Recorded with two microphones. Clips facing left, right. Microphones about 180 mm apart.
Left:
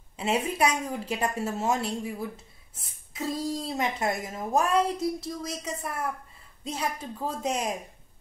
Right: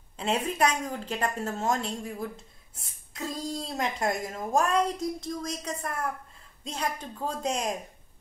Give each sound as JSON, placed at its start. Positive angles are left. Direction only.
{"t": 0.2, "sound": "a woman's voice", "side_deg": 5}